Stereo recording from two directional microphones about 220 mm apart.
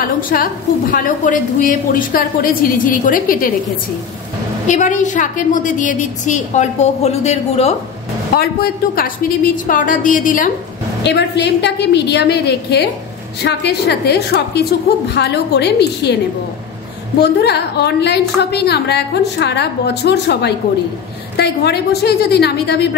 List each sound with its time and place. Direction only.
0.0 s a woman's voice: 40° left (ahead or behind)
4.6 s a woman's voice: 35° left (ahead or behind)
8.4 s a woman's voice: 45° left (ahead or behind)
11.1 s a woman's voice: 50° left (ahead or behind)
17.2 s a woman's voice: 50° left (ahead or behind)